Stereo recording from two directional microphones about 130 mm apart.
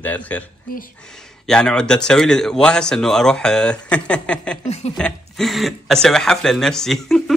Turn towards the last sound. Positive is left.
turn(degrees=5)  # may be behind; listen again after turning